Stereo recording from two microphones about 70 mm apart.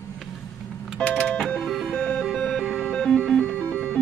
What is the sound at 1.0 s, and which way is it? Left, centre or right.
Music, centre.